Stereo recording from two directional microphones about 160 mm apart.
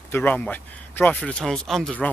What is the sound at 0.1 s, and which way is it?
Speech, 10° left (ahead or behind).